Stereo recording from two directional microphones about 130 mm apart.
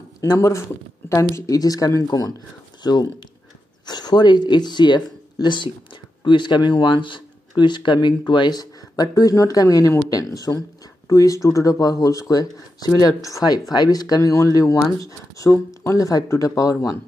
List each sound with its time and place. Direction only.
0.2 s speech: 25° left (ahead or behind)
10.0 s a sound: 25° left (ahead or behind)
11.1 s speech: 25° left (ahead or behind)